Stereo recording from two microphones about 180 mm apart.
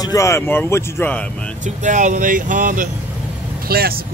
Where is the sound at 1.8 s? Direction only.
45° right (ahead or behind).